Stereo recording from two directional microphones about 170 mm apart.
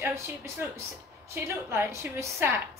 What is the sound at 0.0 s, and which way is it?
A woman's voice, 15° right (ahead or behind).